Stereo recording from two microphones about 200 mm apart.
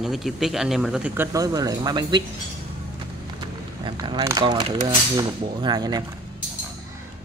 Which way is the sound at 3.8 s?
20° right (ahead or behind).